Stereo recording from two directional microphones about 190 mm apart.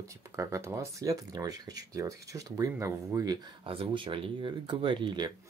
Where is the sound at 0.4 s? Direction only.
15° right (ahead or behind).